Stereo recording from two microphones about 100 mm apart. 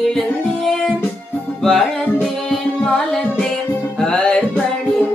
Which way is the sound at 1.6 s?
Centre (ahead or behind).